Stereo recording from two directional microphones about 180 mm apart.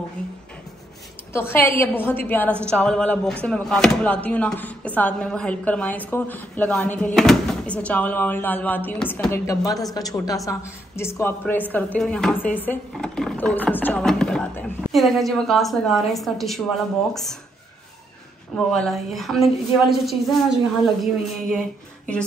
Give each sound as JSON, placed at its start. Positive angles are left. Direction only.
{"t": 1.3, "sound": "a woman's voice", "side_deg": 15}
{"t": 18.7, "sound": "a woman's voice", "side_deg": 0}